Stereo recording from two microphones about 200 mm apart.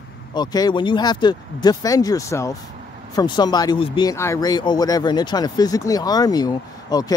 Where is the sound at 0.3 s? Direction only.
20° left (ahead or behind).